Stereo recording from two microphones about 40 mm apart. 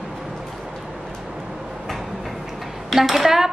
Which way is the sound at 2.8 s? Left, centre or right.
Centre.